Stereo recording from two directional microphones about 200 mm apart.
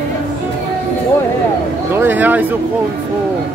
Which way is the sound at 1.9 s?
10° right (ahead or behind).